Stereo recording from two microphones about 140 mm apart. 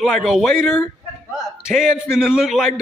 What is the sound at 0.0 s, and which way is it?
Speech, centre (ahead or behind).